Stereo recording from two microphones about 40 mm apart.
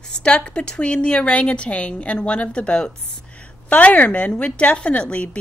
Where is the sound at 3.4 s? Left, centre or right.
Left.